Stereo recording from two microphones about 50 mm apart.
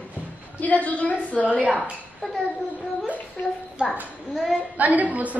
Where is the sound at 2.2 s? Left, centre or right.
Centre.